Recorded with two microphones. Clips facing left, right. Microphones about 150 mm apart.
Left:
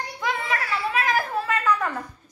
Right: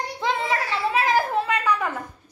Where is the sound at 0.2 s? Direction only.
25° right (ahead or behind).